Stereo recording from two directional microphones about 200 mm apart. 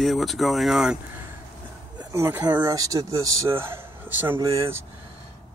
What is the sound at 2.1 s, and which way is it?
A man's voice, 15° right (ahead or behind).